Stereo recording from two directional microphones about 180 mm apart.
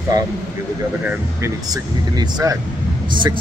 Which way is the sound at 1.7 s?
20° right (ahead or behind).